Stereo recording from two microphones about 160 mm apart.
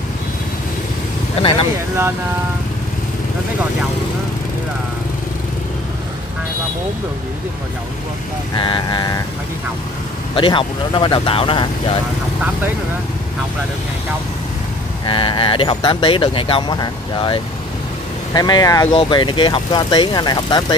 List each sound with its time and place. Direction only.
8.5 s speech: 30° left (ahead or behind)
10.3 s speech: 30° left (ahead or behind)
15.0 s speech: 30° left (ahead or behind)